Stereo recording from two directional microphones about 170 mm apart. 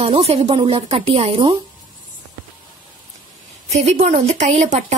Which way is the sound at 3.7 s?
40° right (ahead or behind).